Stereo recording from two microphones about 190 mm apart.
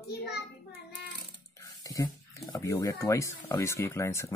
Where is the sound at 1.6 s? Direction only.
15° left (ahead or behind).